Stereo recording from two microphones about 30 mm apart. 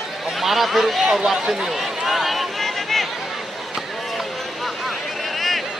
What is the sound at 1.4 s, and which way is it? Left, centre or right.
Speech, right.